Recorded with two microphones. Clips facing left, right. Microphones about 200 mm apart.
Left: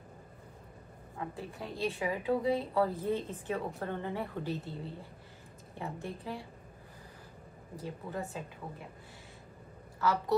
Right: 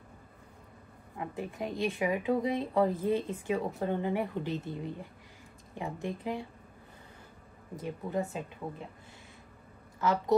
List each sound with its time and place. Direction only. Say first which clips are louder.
1.1 s a woman's voice: right 3 dB; 20° right (ahead or behind)
7.7 s speech: right 6 dB; 20° right (ahead or behind)
9.9 s a woman's voice: right 2 dB; 20° right (ahead or behind)